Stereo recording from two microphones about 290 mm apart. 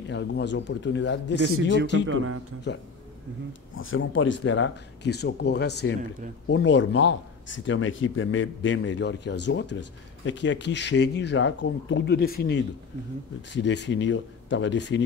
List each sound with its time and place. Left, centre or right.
0.1 s speech: left
2.0 s speech: right
2.7 s speech: left